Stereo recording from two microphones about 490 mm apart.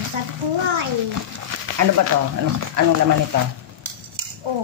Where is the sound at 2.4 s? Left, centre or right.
Right.